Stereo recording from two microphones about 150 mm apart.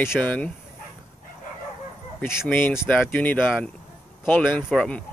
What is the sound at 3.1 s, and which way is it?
Speech, 10° left (ahead or behind).